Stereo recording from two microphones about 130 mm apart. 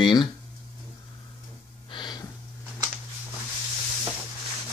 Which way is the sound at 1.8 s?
35° left (ahead or behind).